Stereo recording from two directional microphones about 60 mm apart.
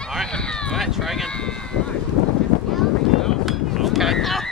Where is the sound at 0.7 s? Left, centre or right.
Centre.